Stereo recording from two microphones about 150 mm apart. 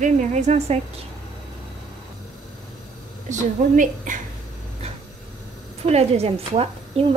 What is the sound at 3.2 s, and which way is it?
Speech, 60° right (ahead or behind).